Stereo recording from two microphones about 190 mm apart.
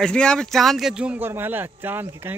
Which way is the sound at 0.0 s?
5° left (ahead or behind).